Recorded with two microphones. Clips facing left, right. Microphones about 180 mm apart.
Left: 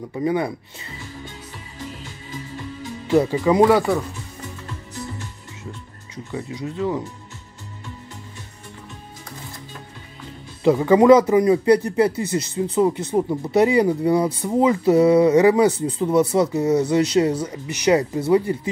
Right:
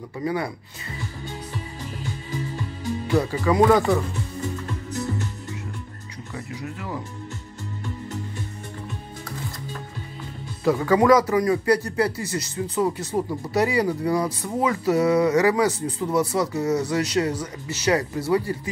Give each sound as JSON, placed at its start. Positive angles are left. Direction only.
{"t": 0.1, "sound": "speech", "side_deg": 20}
{"t": 3.1, "sound": "speech", "side_deg": 20}
{"t": 3.7, "sound": "speech", "side_deg": 5}
{"t": 6.3, "sound": "speech", "side_deg": 20}
{"t": 10.6, "sound": "speech", "side_deg": 20}